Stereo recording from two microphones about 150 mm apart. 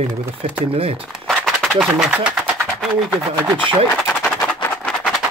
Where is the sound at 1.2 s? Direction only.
Centre (ahead or behind).